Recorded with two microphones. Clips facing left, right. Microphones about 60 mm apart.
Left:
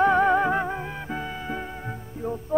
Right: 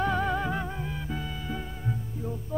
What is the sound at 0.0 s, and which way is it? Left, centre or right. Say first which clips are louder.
Music: left 8 dB; left.